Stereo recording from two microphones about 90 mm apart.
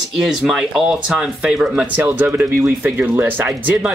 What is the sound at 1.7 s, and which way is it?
Speech, 20° right (ahead or behind).